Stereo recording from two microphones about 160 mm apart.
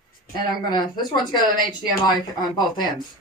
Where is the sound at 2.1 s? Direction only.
25° left (ahead or behind).